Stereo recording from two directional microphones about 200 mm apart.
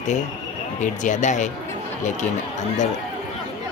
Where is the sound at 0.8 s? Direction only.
35° left (ahead or behind).